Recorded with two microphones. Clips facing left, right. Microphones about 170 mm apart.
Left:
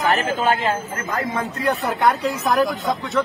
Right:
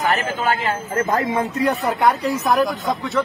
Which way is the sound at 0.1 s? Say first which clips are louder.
Left 1 dB; 20° left (ahead or behind).